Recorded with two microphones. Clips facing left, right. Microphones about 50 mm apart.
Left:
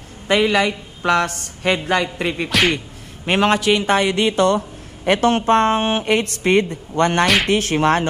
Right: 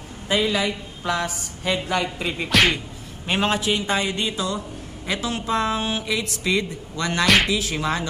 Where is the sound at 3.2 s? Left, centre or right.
Left.